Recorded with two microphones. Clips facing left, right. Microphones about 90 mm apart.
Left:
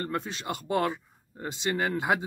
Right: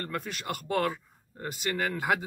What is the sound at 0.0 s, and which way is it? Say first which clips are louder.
Speech: left 3 dB; 25° left (ahead or behind).